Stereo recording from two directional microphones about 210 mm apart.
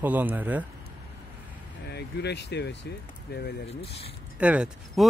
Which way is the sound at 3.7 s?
30° left (ahead or behind).